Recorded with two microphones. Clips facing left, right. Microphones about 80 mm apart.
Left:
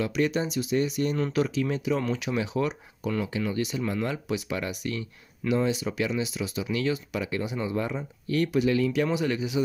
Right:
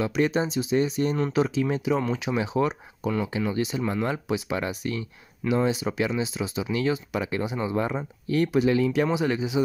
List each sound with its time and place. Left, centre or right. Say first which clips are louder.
0.0 s speech: right 2 dB; right